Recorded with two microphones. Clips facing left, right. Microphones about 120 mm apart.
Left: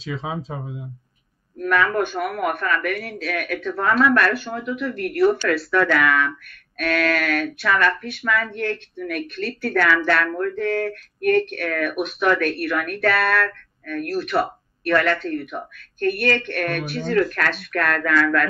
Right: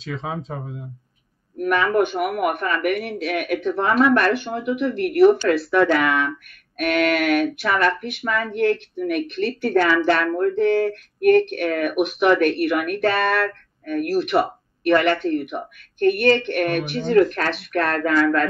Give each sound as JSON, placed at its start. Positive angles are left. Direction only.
{"t": 0.0, "sound": "speech", "side_deg": 0}
{"t": 1.6, "sound": "speech", "side_deg": -20}